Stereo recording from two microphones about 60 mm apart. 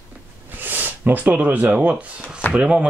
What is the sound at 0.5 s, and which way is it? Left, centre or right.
A man's voice, right.